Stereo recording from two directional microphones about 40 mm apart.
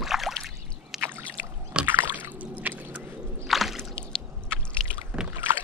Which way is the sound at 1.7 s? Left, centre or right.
Right.